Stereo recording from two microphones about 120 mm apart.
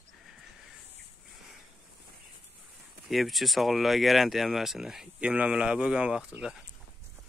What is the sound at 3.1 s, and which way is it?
Speech, centre (ahead or behind).